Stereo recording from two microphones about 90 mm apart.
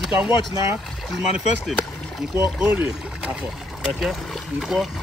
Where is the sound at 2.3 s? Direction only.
30° right (ahead or behind).